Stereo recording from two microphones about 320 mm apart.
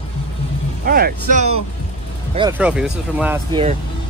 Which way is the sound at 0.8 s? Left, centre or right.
Right.